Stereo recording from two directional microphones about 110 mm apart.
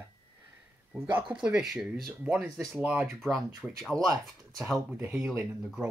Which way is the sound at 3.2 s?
Centre (ahead or behind).